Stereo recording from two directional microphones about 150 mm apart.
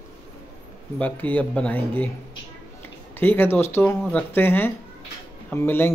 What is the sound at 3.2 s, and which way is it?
Speech, 15° left (ahead or behind).